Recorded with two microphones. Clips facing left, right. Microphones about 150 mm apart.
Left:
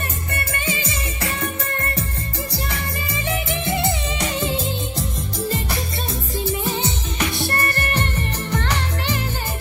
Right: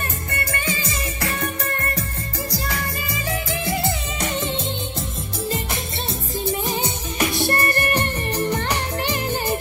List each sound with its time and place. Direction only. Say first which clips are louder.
1.2 s music: even; 35° left (ahead or behind)
3.3 s music: left 1 dB; 25° left (ahead or behind)
4.5 s music: left 2 dB; 5° left (ahead or behind)
6.6 s music: left 1 dB; 15° right (ahead or behind)